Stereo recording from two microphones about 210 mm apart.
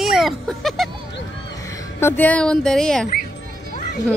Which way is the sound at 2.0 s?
10° left (ahead or behind).